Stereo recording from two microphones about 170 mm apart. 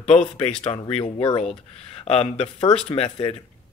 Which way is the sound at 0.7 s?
35° left (ahead or behind).